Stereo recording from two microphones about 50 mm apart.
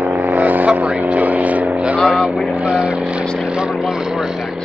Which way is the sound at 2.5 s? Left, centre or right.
Right.